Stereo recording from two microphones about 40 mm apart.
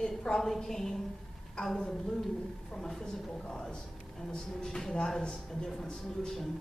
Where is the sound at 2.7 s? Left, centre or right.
Centre.